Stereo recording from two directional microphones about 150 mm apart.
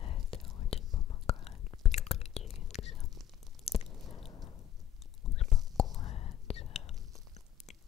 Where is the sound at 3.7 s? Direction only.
40° left (ahead or behind).